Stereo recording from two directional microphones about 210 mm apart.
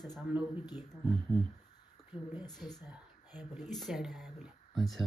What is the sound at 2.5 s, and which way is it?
Speech, centre (ahead or behind).